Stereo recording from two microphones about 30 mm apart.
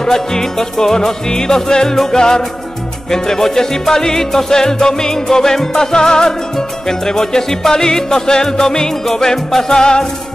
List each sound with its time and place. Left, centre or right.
0.0 s music: centre